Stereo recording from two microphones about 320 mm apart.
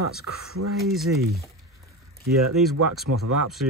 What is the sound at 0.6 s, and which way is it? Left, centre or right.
Speech, right.